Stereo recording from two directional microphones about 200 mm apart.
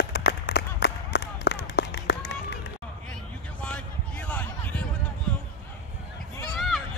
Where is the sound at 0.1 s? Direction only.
55° left (ahead or behind).